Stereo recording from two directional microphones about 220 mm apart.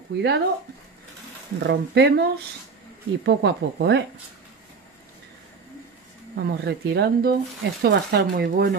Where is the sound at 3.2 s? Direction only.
50° right (ahead or behind).